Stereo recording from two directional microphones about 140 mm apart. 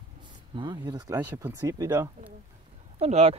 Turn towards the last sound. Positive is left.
turn(degrees=-50)  # may be behind; listen again after turning